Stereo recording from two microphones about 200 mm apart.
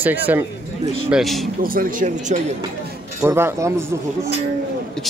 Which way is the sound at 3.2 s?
10° right (ahead or behind).